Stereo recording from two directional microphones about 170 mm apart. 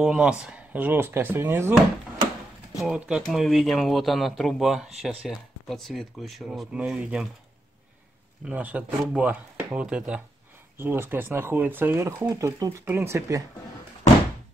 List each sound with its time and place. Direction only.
0.0 s speech: 5° right (ahead or behind)
2.8 s speech: 5° right (ahead or behind)
8.5 s speech: 10° right (ahead or behind)